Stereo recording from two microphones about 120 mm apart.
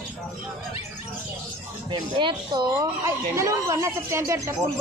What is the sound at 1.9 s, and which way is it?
Speech, 40° right (ahead or behind).